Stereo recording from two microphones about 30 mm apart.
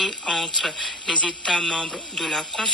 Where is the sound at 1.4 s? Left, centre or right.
Left.